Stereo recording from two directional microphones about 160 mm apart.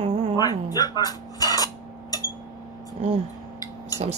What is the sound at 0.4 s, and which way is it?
Dishes, 25° left (ahead or behind).